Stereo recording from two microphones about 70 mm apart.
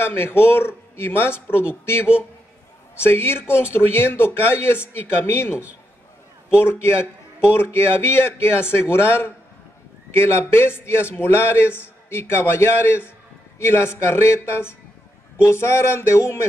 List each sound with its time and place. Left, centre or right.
0.0 s a man's voice: left